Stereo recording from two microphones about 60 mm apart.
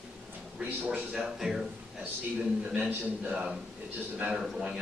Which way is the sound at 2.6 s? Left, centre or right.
Right.